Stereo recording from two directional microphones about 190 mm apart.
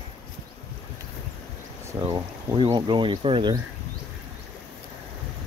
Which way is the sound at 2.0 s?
20° right (ahead or behind).